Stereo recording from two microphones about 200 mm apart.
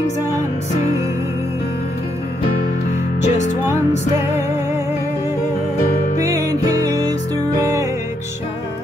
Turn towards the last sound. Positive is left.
turn(degrees=-15)  # may be behind; listen again after turning